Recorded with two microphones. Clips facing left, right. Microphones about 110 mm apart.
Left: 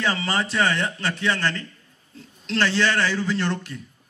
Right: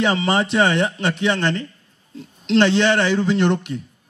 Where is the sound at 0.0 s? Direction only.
20° right (ahead or behind).